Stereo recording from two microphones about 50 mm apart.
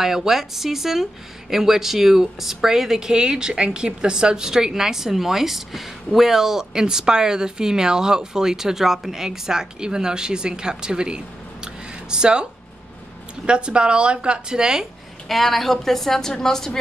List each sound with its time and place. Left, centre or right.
0.0 s speech: centre
13.5 s a woman's voice: centre
15.2 s a woman's voice: centre